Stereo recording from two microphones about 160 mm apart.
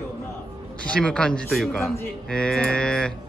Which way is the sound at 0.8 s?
5° left (ahead or behind).